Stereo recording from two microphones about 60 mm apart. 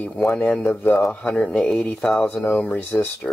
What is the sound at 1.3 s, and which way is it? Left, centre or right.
Speech, centre.